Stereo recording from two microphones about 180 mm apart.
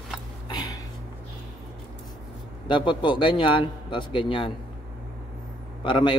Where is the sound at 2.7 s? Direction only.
25° left (ahead or behind).